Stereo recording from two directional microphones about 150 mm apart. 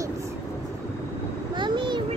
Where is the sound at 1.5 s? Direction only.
30° right (ahead or behind).